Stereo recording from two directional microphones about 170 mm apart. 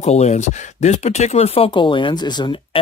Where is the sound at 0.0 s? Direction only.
40° left (ahead or behind).